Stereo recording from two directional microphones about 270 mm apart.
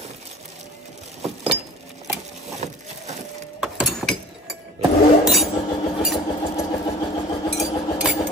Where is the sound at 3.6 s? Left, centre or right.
Centre.